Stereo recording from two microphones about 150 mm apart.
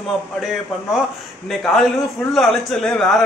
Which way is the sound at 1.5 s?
Centre (ahead or behind).